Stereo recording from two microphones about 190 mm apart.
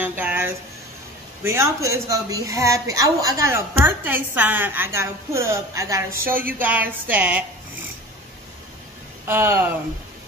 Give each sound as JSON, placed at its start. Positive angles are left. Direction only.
{"t": 0.0, "sound": "a sound", "side_deg": -10}
{"t": 1.4, "sound": "a woman's voice", "side_deg": -15}
{"t": 9.2, "sound": "speech", "side_deg": -10}